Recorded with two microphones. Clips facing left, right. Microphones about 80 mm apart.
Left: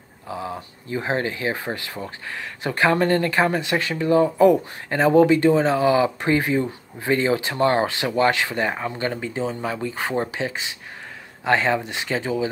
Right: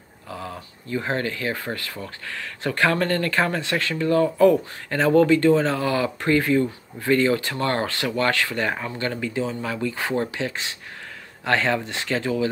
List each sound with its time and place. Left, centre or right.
0.3 s speech: centre